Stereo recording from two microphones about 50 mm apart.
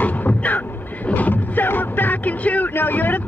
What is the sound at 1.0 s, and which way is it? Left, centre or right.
Music, left.